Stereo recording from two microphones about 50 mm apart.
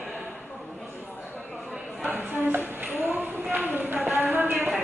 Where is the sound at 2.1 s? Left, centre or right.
Right.